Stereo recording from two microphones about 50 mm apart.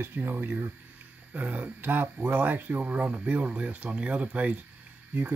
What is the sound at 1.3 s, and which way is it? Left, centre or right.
Speech, right.